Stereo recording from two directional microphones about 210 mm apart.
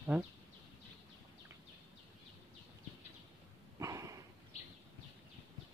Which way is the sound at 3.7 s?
15° right (ahead or behind).